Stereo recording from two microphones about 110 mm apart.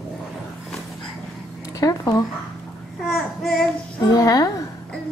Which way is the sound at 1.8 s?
35° left (ahead or behind).